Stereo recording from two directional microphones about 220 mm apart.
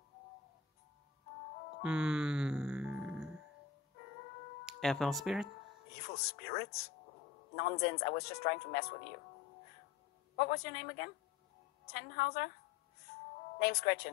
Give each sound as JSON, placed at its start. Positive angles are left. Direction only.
{"t": 1.8, "sound": "music", "side_deg": -5}
{"t": 4.6, "sound": "speech", "side_deg": 0}
{"t": 5.9, "sound": "speech", "side_deg": 45}
{"t": 10.3, "sound": "speech", "side_deg": 45}
{"t": 13.1, "sound": "music", "side_deg": 45}
{"t": 13.6, "sound": "speech", "side_deg": 45}